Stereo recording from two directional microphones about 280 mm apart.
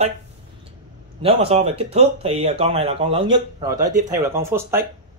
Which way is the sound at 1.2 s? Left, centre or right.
Right.